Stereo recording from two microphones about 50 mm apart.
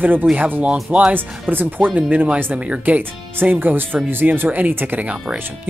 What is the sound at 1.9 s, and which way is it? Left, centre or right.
Speech, right.